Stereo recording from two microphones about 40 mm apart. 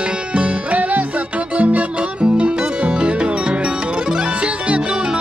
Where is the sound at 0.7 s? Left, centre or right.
Right.